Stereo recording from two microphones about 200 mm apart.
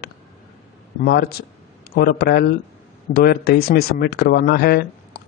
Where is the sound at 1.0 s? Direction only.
50° left (ahead or behind).